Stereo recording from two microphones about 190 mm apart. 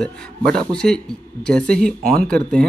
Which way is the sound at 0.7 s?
5° left (ahead or behind).